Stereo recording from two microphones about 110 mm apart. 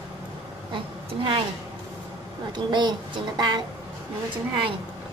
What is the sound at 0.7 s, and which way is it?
Speech, 50° right (ahead or behind).